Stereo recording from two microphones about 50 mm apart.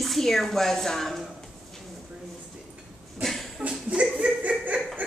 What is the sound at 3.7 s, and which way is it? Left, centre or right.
Chuckle, centre.